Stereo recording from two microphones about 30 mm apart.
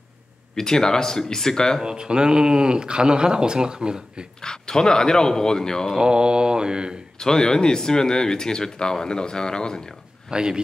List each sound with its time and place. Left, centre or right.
0.6 s speech: left
1.8 s speech: right
4.4 s speech: left
5.9 s speech: right
7.2 s speech: centre
10.3 s speech: right